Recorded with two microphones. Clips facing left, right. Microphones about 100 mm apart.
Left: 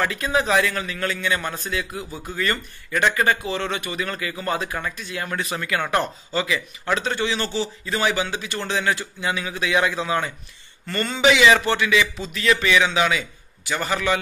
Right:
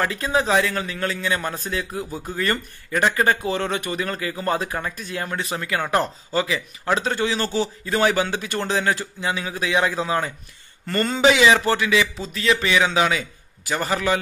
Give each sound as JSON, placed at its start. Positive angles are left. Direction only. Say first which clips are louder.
{"t": 0.0, "sound": "speech", "louder": "right 1 dB", "side_deg": -30}
{"t": 3.4, "sound": "speech", "louder": "right 2 dB", "side_deg": -40}
{"t": 8.7, "sound": "speech", "louder": "left 1 dB", "side_deg": -35}